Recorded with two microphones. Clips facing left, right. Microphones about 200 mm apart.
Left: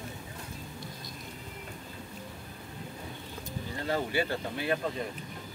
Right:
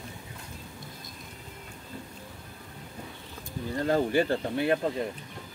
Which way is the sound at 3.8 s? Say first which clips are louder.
Right 6 dB; 45° right (ahead or behind).